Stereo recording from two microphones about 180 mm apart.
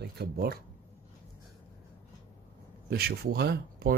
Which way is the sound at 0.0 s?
60° right (ahead or behind).